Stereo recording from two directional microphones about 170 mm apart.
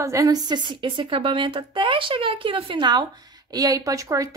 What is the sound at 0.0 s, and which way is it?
A woman's voice, 20° right (ahead or behind).